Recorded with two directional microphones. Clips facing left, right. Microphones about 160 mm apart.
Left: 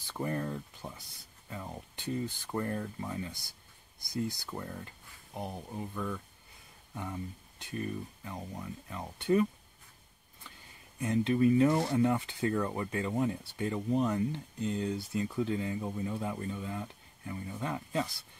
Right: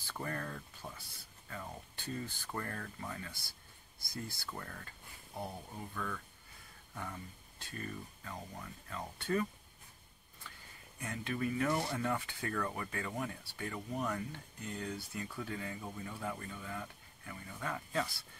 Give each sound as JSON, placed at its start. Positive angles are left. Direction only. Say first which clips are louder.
{"t": 0.0, "sound": "speech", "louder": "left 6 dB", "side_deg": 20}
{"t": 10.4, "sound": "a sound", "louder": "left 1 dB", "side_deg": 20}
{"t": 11.0, "sound": "speech", "louder": "left 11 dB", "side_deg": 25}